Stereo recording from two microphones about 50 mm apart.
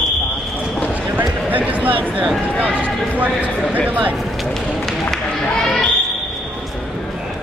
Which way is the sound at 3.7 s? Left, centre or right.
Right.